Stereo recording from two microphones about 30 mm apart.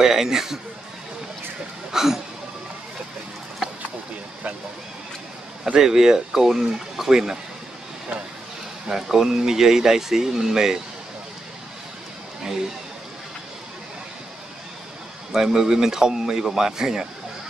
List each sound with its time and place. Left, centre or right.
0.0 s a man's voice: centre
1.9 s a sound: centre
5.8 s speech: centre
8.8 s speech: centre
15.3 s a man's voice: centre